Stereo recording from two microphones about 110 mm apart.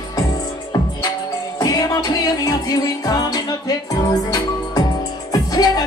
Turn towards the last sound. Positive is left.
turn(degrees=35)  # may be behind; listen again after turning